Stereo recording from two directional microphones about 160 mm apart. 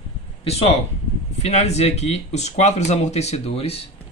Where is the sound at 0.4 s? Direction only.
40° left (ahead or behind).